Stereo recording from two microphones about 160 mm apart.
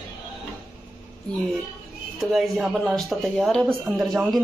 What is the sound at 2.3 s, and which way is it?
Speech, centre (ahead or behind).